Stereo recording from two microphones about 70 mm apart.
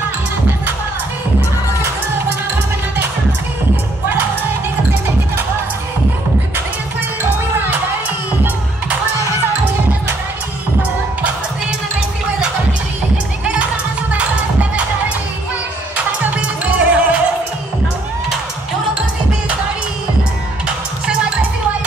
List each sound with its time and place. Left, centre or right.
7.5 s music: right
14.1 s music: centre
16.3 s music: centre
20.6 s music: centre